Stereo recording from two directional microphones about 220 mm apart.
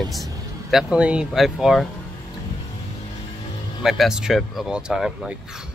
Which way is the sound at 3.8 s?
Centre (ahead or behind).